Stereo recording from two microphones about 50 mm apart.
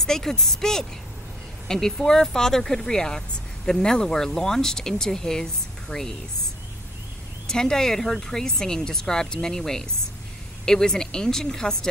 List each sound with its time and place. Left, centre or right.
0.0 s speech: centre
7.4 s speech: centre